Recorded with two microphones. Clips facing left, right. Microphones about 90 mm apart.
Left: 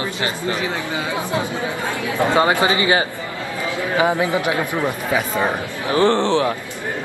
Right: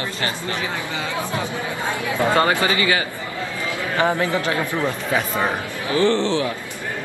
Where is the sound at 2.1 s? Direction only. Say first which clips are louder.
Left 2 dB; 20° left (ahead or behind).